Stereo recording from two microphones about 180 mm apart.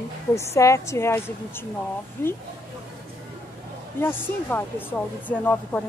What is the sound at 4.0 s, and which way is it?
Speech, 10° left (ahead or behind).